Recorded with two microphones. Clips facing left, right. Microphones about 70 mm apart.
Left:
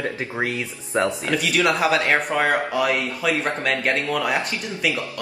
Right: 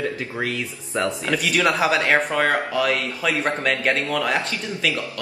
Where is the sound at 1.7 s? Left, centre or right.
Centre.